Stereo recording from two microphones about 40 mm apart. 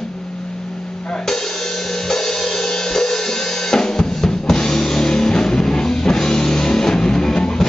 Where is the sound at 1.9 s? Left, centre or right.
Centre.